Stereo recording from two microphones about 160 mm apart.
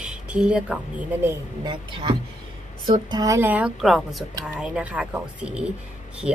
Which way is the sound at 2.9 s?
25° right (ahead or behind).